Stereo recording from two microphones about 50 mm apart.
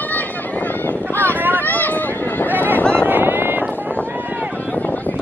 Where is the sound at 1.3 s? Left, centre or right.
Right.